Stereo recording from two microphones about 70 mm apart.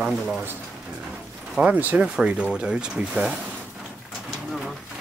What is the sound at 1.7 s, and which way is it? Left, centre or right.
Speech, right.